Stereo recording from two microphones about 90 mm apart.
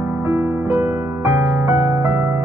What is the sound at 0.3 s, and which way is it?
Music, 20° right (ahead or behind).